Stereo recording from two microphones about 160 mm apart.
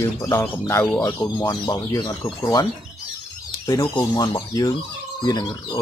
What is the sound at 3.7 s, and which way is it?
Speech, 20° left (ahead or behind).